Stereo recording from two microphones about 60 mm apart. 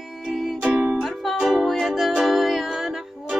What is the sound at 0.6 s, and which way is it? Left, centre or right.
Music, right.